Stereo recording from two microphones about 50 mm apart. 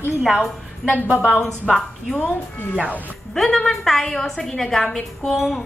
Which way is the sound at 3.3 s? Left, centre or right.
Centre.